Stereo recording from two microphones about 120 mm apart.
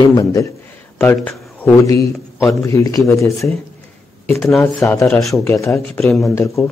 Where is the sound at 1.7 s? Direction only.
25° left (ahead or behind).